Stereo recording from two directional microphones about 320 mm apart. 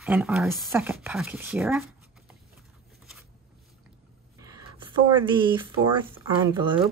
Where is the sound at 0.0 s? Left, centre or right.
Centre.